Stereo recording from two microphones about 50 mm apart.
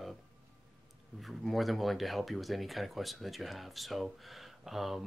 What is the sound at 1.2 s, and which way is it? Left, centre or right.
Speech, centre.